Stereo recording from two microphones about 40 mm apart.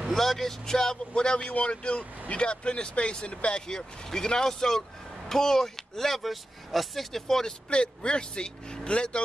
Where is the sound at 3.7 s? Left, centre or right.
Centre.